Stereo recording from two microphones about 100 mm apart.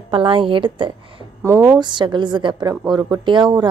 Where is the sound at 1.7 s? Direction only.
50° right (ahead or behind).